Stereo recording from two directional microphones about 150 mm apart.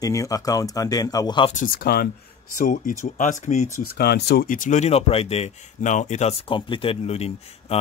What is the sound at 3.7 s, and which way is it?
Speech, 90° left.